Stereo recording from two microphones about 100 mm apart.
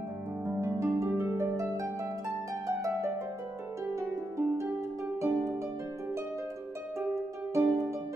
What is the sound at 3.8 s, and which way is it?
Harp, 30° right (ahead or behind).